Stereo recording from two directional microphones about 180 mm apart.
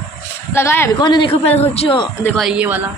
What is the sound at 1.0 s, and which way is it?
A man's voice, 25° left (ahead or behind).